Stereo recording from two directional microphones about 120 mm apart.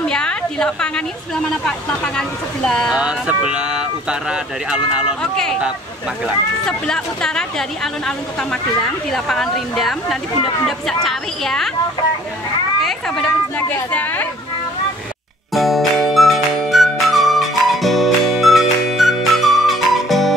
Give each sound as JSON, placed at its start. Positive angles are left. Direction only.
{"t": 0.0, "sound": "a woman's voice", "side_deg": 5}
{"t": 2.9, "sound": "speech", "side_deg": -10}
{"t": 5.2, "sound": "speech", "side_deg": 5}
{"t": 6.6, "sound": "speech", "side_deg": 5}
{"t": 12.8, "sound": "speech", "side_deg": 5}
{"t": 13.6, "sound": "speech", "side_deg": 15}
{"t": 15.5, "sound": "music", "side_deg": 0}